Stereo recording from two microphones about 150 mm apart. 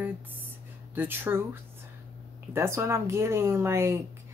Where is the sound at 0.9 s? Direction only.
15° right (ahead or behind).